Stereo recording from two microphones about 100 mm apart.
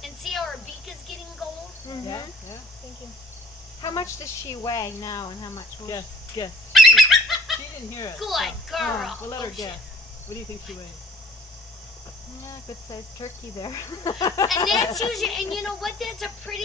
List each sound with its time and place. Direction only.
0.0 s a sound: centre (ahead or behind)
1.9 s cricket: 45° left (ahead or behind)
3.8 s speech: 35° left (ahead or behind)
6.7 s fowl: centre (ahead or behind)
8.2 s speech: centre (ahead or behind)
9.3 s speech: 40° left (ahead or behind)
12.4 s speech: 40° left (ahead or behind)
15.0 s speech: centre (ahead or behind)